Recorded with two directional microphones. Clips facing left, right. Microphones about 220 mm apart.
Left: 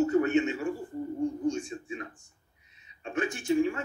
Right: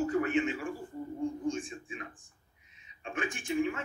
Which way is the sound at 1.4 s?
30° right (ahead or behind).